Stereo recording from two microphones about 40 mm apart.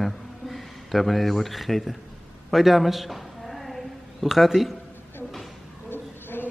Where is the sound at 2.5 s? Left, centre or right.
Centre.